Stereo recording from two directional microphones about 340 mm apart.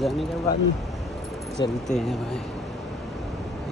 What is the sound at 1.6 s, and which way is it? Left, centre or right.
Speech, centre.